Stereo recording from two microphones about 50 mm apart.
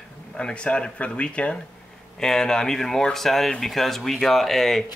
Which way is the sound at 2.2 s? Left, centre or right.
Centre.